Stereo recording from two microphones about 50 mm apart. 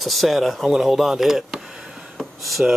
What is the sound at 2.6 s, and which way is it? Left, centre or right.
Speech, right.